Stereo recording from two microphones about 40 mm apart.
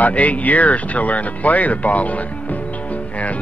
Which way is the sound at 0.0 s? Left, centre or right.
Left.